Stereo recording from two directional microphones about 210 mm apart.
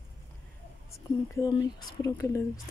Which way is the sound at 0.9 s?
15° left (ahead or behind).